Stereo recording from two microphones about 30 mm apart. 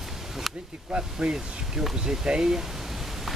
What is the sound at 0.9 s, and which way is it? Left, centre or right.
Speech, centre.